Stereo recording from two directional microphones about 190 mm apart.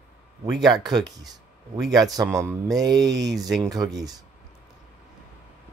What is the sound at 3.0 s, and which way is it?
Speech, 65° right (ahead or behind).